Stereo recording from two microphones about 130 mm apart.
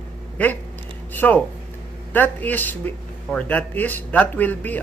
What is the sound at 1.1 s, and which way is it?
Speech, 10° left (ahead or behind).